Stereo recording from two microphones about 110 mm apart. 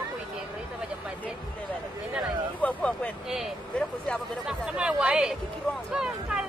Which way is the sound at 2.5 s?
10° left (ahead or behind).